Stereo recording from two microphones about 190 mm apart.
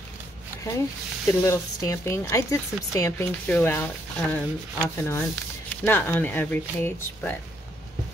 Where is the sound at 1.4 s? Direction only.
15° left (ahead or behind).